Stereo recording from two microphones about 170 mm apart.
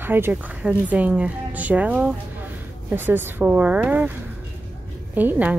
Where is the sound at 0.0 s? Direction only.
10° right (ahead or behind).